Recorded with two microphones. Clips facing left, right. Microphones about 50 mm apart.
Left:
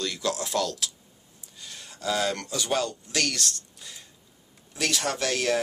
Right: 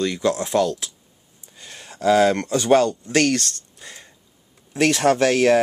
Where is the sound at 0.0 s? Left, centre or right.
Right.